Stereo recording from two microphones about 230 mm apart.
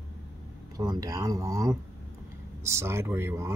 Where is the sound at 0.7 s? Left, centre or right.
Centre.